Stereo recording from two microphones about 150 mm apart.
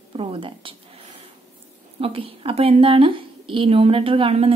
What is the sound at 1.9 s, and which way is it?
A woman's voice, 40° right (ahead or behind).